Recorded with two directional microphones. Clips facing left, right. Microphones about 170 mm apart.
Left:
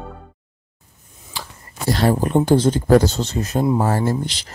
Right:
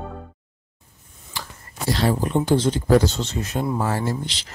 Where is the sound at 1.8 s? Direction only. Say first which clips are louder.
Left 4 dB; 50° left (ahead or behind).